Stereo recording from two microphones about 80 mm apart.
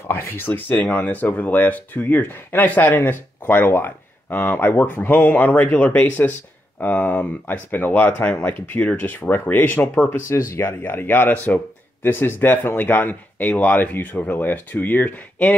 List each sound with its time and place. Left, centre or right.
0.1 s speech: left
10.0 s speech: left